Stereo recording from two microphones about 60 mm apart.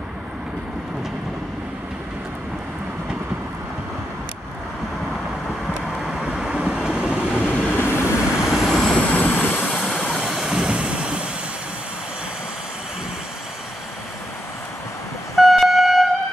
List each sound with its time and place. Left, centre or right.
6.3 s wind noise: centre
7.4 s train: left
8.5 s vehicle: centre
8.9 s vehicle: left
9.7 s vehicle: centre
10.3 s waves: centre
15.3 s vehicle: centre